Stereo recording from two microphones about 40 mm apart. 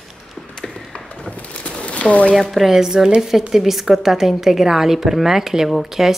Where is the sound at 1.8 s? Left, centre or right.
Left.